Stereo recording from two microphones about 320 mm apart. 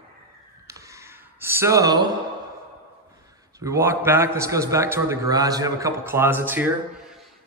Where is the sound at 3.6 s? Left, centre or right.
Centre.